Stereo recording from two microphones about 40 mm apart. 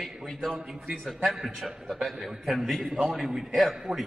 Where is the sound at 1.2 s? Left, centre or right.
Centre.